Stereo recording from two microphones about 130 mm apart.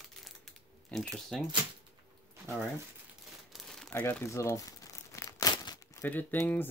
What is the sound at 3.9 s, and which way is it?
Speech, 15° left (ahead or behind).